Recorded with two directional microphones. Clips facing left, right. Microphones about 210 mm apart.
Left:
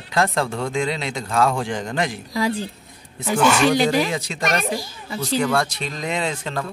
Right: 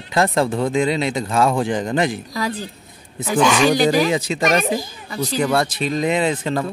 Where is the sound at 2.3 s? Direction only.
25° left (ahead or behind).